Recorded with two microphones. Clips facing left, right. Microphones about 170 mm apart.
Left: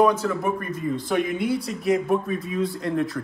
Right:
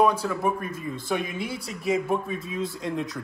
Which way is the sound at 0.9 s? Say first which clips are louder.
Left 5 dB; centre (ahead or behind).